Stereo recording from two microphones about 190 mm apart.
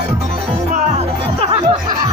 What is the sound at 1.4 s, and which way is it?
Music, 30° right (ahead or behind).